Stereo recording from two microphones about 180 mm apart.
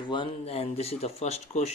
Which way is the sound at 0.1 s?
30° left (ahead or behind).